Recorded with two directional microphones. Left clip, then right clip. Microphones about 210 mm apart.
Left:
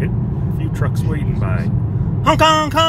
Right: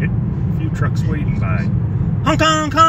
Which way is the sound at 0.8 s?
Centre (ahead or behind).